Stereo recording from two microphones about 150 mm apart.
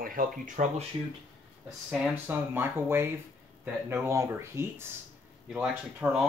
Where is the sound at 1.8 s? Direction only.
10° right (ahead or behind).